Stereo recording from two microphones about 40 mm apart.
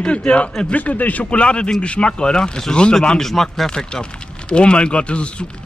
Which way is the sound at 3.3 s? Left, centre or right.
Centre.